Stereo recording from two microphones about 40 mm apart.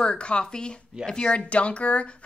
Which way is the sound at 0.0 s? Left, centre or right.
Left.